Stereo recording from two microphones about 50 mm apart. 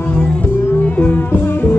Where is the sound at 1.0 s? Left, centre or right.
Left.